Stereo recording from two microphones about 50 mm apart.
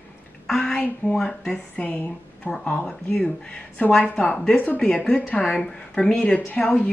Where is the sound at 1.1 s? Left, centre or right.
Centre.